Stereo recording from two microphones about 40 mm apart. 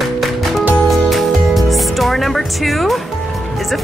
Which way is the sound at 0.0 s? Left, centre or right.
Centre.